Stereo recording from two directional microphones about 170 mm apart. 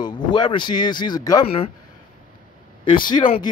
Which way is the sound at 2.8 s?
30° left (ahead or behind).